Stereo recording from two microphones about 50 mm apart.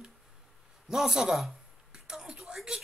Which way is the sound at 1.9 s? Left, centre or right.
Centre.